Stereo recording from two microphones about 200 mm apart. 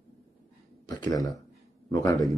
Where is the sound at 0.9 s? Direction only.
20° left (ahead or behind).